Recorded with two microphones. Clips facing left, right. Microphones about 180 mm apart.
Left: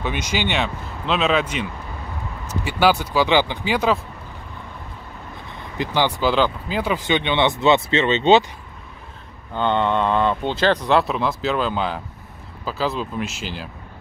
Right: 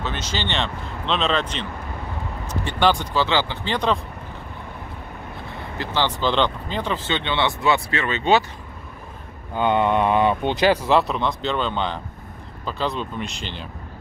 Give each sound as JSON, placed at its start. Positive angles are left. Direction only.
{"t": 0.0, "sound": "speech", "side_deg": 15}
{"t": 5.8, "sound": "speech", "side_deg": 15}
{"t": 9.6, "sound": "speech", "side_deg": -10}